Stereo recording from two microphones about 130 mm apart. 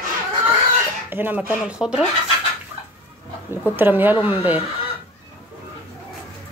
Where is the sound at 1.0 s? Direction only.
15° right (ahead or behind).